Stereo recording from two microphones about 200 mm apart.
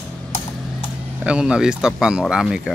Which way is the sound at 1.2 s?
5° right (ahead or behind).